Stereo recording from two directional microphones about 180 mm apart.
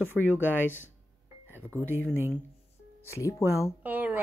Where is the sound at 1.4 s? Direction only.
10° right (ahead or behind).